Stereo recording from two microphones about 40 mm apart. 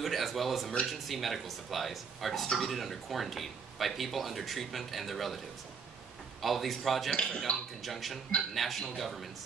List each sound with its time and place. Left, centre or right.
0.0 s speech: centre
6.4 s speech: centre
7.5 s speech: left
7.8 s speech: centre